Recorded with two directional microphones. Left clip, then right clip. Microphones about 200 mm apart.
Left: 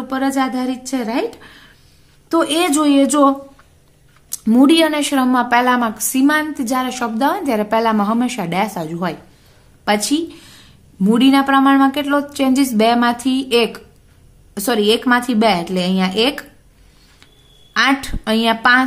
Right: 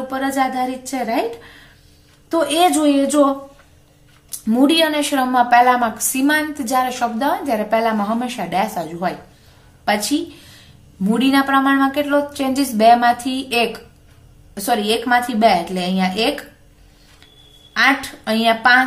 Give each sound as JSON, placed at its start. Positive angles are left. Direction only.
{"t": 0.1, "sound": "a woman's voice", "side_deg": 35}
{"t": 4.5, "sound": "a woman's voice", "side_deg": 35}
{"t": 17.7, "sound": "a woman's voice", "side_deg": 35}